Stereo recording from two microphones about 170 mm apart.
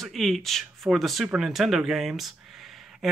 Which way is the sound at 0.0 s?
Centre (ahead or behind).